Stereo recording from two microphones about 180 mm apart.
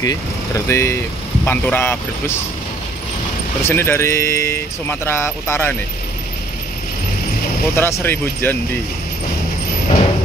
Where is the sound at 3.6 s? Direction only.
15° left (ahead or behind).